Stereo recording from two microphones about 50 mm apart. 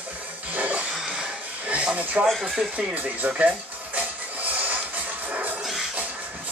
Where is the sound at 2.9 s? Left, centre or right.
Right.